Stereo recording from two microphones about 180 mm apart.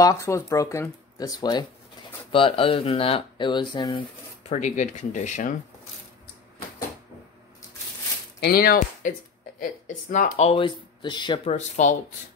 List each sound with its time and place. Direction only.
0.0 s speech: 15° left (ahead or behind)
4.4 s speech: 40° left (ahead or behind)
8.4 s speech: 60° left (ahead or behind)
9.6 s speech: 45° left (ahead or behind); by 11.5 s 25° left (ahead or behind)
11.5 s speech: 40° left (ahead or behind)